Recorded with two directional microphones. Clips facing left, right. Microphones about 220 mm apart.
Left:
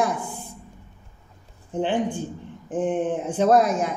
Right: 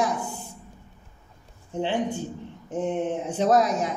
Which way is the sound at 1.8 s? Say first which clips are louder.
Left 2 dB; 50° left (ahead or behind).